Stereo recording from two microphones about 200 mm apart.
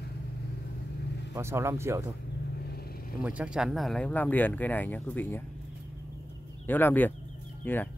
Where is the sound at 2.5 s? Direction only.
50° left (ahead or behind).